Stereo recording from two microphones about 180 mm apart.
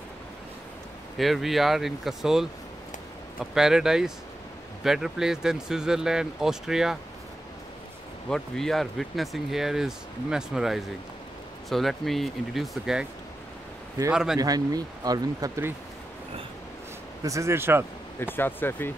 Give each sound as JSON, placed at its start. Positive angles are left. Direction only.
{"t": 1.1, "sound": "speech", "side_deg": 0}
{"t": 8.3, "sound": "speech", "side_deg": 0}
{"t": 14.1, "sound": "speech", "side_deg": -5}
{"t": 14.4, "sound": "speech", "side_deg": -20}
{"t": 17.2, "sound": "speech", "side_deg": -15}
{"t": 18.2, "sound": "speech", "side_deg": 10}